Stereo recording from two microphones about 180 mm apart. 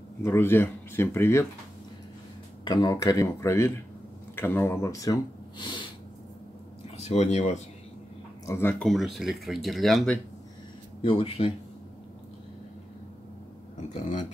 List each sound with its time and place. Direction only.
0.2 s speech: 15° left (ahead or behind)
2.6 s speech: 20° left (ahead or behind)
7.0 s speech: 35° left (ahead or behind)
8.5 s speech: 15° left (ahead or behind)
8.8 s speech: centre (ahead or behind)
11.0 s speech: 30° left (ahead or behind)
13.9 s speech: 45° left (ahead or behind)